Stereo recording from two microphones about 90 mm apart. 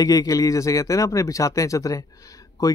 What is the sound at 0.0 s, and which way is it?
Speech, 40° left (ahead or behind).